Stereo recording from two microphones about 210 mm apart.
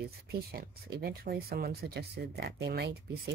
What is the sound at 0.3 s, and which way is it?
Speech, 50° right (ahead or behind).